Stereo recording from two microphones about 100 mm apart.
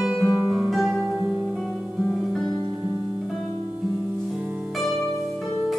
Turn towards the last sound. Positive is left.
turn(degrees=0)  # may be behind; listen again after turning